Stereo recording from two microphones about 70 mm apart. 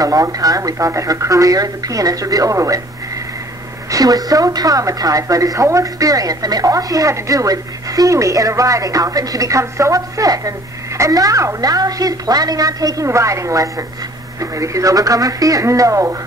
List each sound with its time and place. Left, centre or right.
0.0 s speech: right
3.9 s speech: right